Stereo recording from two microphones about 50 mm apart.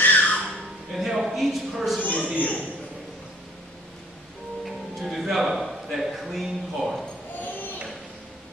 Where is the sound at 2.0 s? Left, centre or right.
Left.